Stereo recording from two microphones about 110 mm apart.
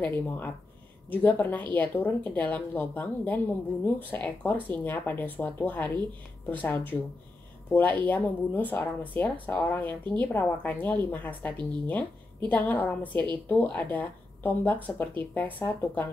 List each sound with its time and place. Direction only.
0.0 s speech: 15° left (ahead or behind)